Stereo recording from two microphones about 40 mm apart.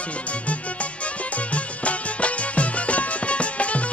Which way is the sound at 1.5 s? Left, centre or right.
Left.